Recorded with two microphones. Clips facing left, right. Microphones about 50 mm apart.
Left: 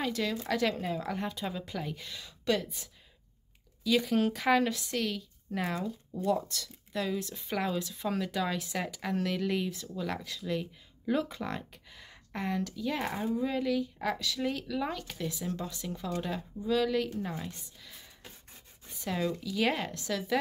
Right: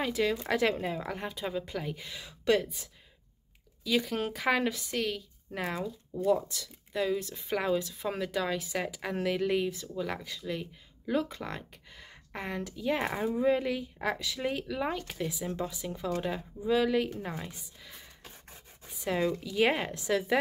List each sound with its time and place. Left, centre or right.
0.0 s speech: centre
3.8 s speech: centre
18.9 s a sound: centre
19.1 s speech: right